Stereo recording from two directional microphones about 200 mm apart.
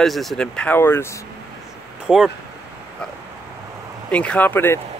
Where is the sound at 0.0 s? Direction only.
Centre (ahead or behind).